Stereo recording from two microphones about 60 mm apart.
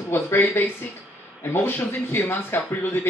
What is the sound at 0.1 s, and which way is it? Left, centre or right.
Speech, left.